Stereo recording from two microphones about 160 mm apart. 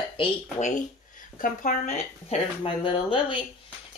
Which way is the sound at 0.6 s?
50° left (ahead or behind).